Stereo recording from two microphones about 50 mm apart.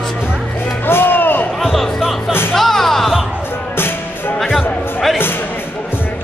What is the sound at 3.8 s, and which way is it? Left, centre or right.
Music, left.